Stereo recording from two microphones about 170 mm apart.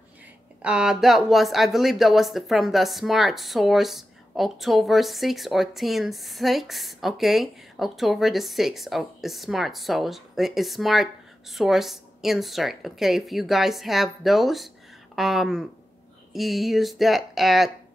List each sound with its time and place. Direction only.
0.6 s speech: 5° right (ahead or behind)